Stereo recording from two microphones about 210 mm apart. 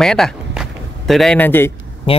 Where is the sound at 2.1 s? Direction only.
25° left (ahead or behind).